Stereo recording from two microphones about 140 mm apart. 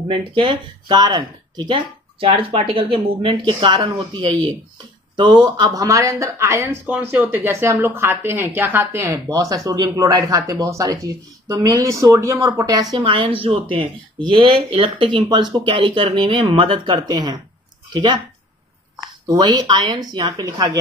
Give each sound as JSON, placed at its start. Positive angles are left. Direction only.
{"t": 0.3, "sound": "speech", "side_deg": -40}
{"t": 12.9, "sound": "speech", "side_deg": -40}
{"t": 19.2, "sound": "speech", "side_deg": -25}